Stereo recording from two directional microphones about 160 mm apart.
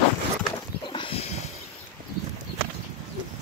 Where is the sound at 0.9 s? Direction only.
35° left (ahead or behind).